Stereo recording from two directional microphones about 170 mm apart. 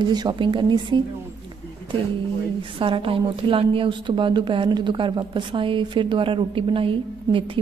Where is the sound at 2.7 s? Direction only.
30° right (ahead or behind).